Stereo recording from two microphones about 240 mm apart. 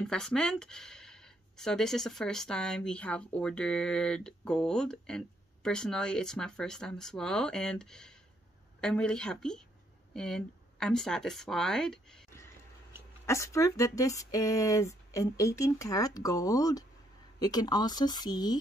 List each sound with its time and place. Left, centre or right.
0.0 s speech: centre